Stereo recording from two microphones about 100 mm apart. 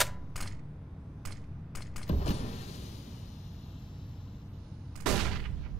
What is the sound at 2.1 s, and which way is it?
Power windows, 90° left.